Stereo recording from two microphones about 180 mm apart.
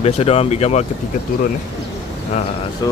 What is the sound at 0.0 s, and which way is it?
Speech, 35° left (ahead or behind).